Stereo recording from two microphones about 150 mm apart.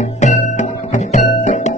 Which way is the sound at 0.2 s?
50° left (ahead or behind).